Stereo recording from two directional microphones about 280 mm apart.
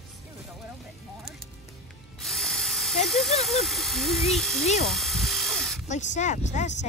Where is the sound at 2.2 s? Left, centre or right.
Centre.